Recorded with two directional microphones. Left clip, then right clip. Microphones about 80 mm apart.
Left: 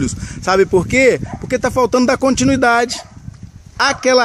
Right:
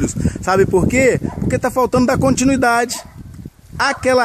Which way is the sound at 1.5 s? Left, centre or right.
Centre.